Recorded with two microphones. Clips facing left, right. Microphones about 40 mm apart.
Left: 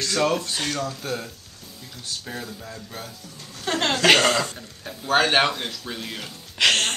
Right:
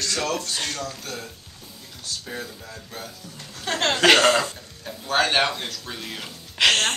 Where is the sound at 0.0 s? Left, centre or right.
Centre.